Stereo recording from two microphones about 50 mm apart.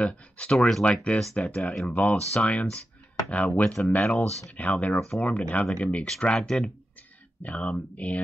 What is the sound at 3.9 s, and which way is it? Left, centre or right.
Speech, left.